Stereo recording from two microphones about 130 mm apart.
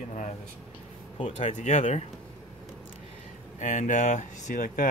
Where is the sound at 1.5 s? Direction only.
70° left (ahead or behind).